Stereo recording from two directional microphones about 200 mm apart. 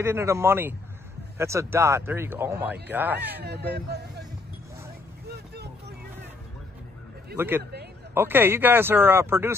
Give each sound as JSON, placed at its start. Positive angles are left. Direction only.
{"t": 0.0, "sound": "speech", "side_deg": -15}
{"t": 3.4, "sound": "speech", "side_deg": -55}
{"t": 5.3, "sound": "vehicle", "side_deg": -55}
{"t": 7.3, "sound": "speech", "side_deg": -10}